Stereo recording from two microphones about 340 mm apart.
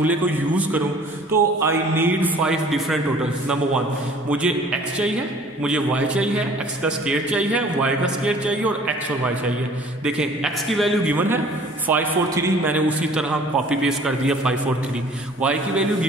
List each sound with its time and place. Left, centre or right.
0.0 s a man's voice: centre
4.3 s a man's voice: centre
10.0 s a man's voice: centre